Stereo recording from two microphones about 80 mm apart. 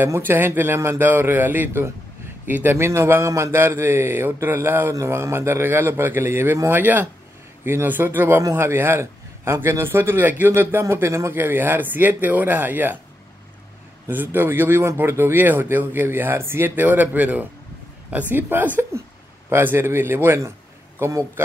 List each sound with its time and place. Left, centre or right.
0.0 s a man's voice: right
14.1 s a man's voice: right
21.0 s a man's voice: right